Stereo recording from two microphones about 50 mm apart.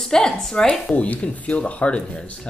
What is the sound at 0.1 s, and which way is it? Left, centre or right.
Speech, centre.